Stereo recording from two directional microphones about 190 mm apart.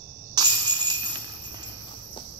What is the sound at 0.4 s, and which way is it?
Music, 20° right (ahead or behind).